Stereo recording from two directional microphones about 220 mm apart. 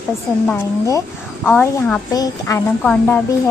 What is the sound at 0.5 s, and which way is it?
Speech, 10° left (ahead or behind).